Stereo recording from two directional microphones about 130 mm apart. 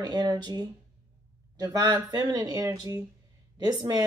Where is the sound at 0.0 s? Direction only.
30° right (ahead or behind).